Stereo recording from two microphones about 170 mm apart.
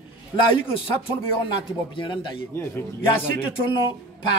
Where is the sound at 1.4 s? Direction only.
30° left (ahead or behind).